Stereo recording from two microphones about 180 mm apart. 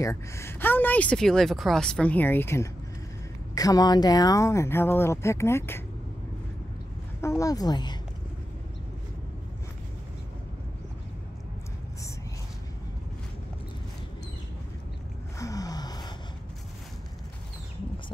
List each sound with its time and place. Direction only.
0.0 s a woman's voice: 15° left (ahead or behind)
7.2 s a woman's voice: 15° left (ahead or behind)
15.3 s gasp: 20° left (ahead or behind)